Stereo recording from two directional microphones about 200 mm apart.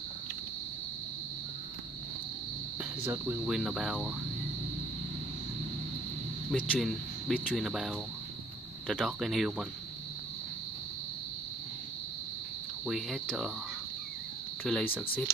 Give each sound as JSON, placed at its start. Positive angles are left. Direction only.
{"t": 2.8, "sound": "speech", "side_deg": -10}
{"t": 6.5, "sound": "speech", "side_deg": 5}
{"t": 12.8, "sound": "speech", "side_deg": 0}
{"t": 14.6, "sound": "speech", "side_deg": 0}